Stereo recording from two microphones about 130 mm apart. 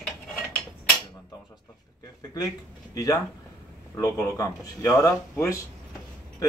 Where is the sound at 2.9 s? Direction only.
25° left (ahead or behind).